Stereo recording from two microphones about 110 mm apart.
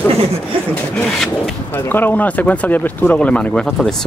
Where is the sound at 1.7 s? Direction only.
20° left (ahead or behind).